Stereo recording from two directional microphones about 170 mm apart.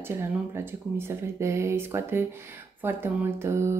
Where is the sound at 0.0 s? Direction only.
15° right (ahead or behind).